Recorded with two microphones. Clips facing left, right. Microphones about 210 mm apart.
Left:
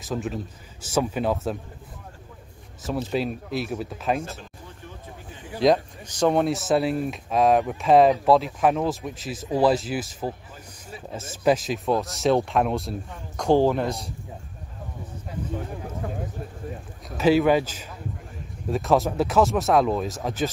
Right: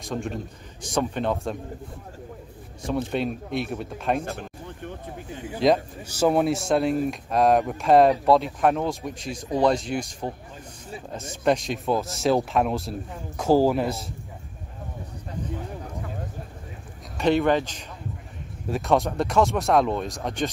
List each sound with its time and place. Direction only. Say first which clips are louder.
0.0 s speech: left 1 dB; 5° left (ahead or behind)
2.8 s speech: even; centre (ahead or behind)
4.2 s a sound: right 3 dB; 60° right (ahead or behind)
5.6 s speech: left 1 dB; 5° right (ahead or behind)
17.2 s speech: left 2 dB; 5° left (ahead or behind)